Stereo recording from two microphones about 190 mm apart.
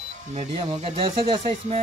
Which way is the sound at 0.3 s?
35° right (ahead or behind).